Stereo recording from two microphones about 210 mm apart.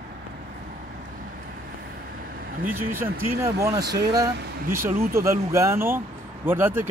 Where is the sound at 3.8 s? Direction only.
50° right (ahead or behind).